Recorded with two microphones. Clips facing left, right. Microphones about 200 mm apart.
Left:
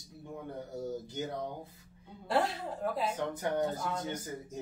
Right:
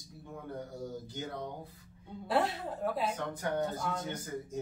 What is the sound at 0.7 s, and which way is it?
Speech, 25° left (ahead or behind).